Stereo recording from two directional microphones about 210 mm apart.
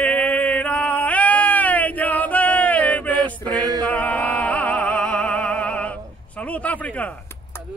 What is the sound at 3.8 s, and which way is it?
Music, 5° left (ahead or behind).